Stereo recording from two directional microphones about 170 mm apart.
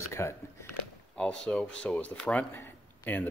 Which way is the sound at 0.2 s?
15° left (ahead or behind).